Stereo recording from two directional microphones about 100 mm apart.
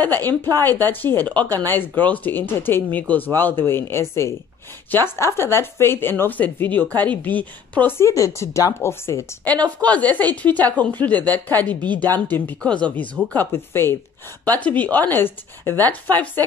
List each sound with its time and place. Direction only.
0.0 s speech: 20° left (ahead or behind)
8.0 s speech: 30° left (ahead or behind)
9.8 s a woman's voice: 15° left (ahead or behind)